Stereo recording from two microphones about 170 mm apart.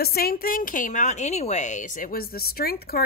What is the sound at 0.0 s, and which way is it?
A woman's voice, 60° left (ahead or behind).